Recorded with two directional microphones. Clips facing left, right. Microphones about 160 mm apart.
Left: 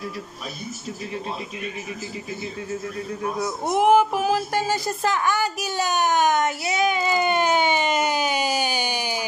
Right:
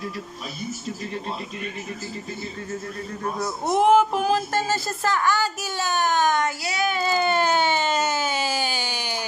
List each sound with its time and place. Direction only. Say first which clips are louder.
3.3 s speech: right 1 dB; 10° left (ahead or behind)